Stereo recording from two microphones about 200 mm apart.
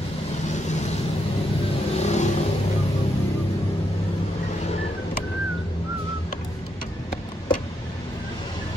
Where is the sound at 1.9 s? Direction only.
35° left (ahead or behind).